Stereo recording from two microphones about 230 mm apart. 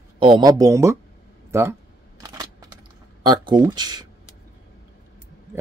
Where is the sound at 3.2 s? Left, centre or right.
Centre.